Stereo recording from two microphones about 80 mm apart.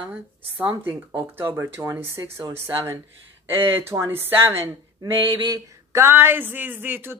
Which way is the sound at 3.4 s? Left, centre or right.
Right.